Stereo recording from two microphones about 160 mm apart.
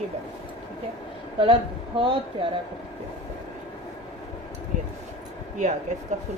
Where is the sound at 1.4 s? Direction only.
30° right (ahead or behind).